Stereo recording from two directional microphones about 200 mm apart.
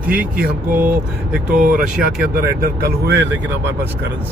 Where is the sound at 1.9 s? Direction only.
5° right (ahead or behind).